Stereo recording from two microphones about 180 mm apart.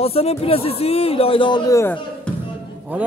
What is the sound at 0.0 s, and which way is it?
Speech, 35° left (ahead or behind).